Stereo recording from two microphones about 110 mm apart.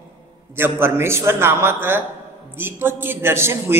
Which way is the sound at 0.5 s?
20° right (ahead or behind).